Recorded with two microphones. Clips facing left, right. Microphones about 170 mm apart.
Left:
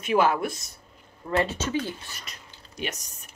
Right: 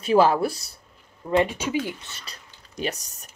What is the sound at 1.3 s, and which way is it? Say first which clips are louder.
Speech: right 3 dB; 15° right (ahead or behind).